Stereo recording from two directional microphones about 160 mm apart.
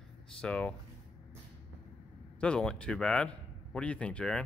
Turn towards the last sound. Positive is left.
turn(degrees=5)  # may be behind; listen again after turning